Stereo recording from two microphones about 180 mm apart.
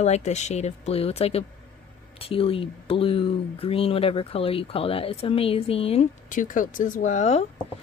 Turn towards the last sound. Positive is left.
turn(degrees=40)  # may be behind; listen again after turning